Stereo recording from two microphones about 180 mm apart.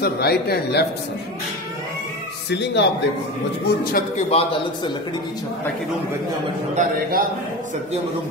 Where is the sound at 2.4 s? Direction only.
70° left (ahead or behind).